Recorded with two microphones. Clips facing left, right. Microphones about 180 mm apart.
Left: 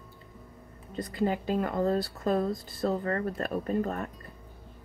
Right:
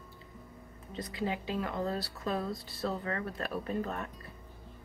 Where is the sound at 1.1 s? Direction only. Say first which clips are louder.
Left 6 dB; 45° left (ahead or behind).